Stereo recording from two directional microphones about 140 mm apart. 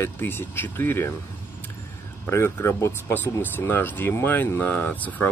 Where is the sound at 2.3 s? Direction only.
20° left (ahead or behind).